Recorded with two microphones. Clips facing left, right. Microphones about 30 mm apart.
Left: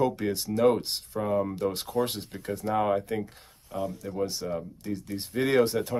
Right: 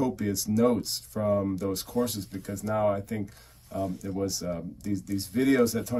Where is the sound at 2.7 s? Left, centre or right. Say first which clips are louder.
Even; left.